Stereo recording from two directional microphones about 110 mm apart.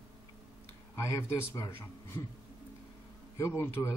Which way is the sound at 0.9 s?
30° left (ahead or behind).